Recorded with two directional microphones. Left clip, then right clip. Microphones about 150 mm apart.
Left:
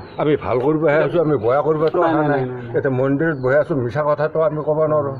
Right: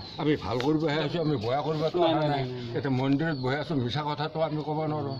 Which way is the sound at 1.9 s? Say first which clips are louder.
Left 8 dB; 25° left (ahead or behind).